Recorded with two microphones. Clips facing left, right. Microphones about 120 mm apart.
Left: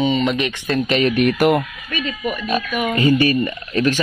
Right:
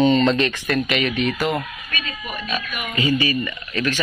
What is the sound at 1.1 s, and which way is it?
Speech, 60° left (ahead or behind).